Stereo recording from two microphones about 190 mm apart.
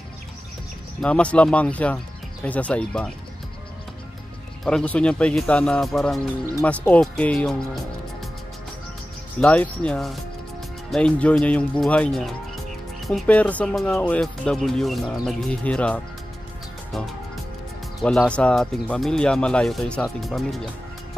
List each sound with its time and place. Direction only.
1.0 s speech: 5° left (ahead or behind)
4.6 s speech: 5° left (ahead or behind)
9.4 s speech: 5° left (ahead or behind)
18.0 s speech: 5° left (ahead or behind)